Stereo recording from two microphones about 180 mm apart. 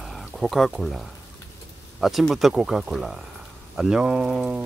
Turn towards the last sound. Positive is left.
turn(degrees=-5)  # may be behind; listen again after turning